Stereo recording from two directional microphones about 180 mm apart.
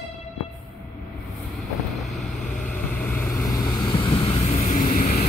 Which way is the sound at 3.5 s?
20° left (ahead or behind).